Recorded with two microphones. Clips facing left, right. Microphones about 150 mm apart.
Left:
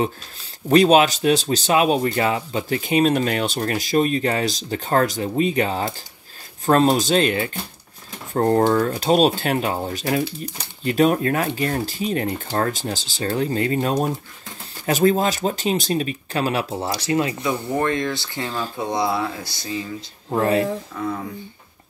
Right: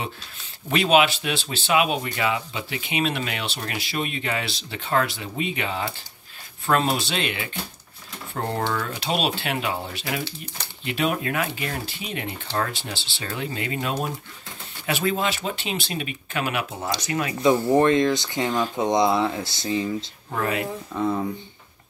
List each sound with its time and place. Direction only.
0.7 s speech: 40° left (ahead or behind)
17.7 s speech: 20° right (ahead or behind)
20.2 s speech: 30° left (ahead or behind)
20.9 s speech: 20° right (ahead or behind)